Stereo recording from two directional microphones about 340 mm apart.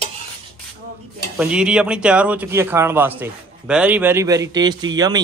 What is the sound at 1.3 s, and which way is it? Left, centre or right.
Speech, centre.